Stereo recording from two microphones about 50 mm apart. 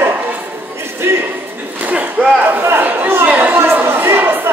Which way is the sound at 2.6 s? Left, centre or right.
Right.